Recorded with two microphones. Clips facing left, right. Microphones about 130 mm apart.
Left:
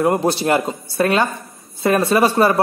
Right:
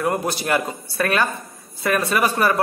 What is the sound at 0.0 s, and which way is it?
A man's voice, 25° left (ahead or behind).